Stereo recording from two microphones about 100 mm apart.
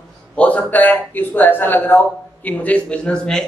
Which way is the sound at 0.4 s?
15° left (ahead or behind).